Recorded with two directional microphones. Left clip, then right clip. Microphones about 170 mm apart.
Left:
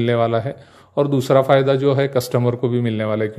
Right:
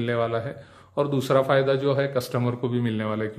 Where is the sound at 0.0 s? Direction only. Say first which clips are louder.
Left 7 dB; 40° left (ahead or behind).